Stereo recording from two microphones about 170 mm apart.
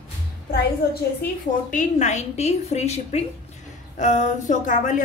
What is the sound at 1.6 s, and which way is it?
A woman's voice, 45° left (ahead or behind).